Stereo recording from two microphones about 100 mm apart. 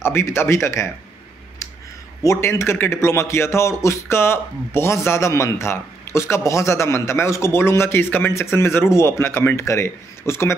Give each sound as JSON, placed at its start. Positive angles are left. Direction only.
{"t": 0.0, "sound": "speech", "side_deg": 25}
{"t": 2.2, "sound": "speech", "side_deg": 25}